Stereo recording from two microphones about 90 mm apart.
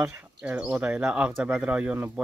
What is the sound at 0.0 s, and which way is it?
Speech, 15° right (ahead or behind).